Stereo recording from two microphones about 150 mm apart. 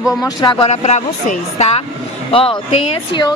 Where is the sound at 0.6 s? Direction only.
45° left (ahead or behind).